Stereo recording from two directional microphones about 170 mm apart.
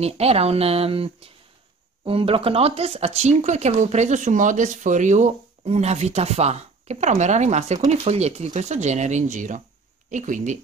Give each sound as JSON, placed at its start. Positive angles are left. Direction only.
{"t": 0.0, "sound": "speech", "side_deg": -35}